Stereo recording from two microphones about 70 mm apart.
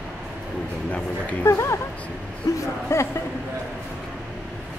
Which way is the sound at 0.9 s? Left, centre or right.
Left.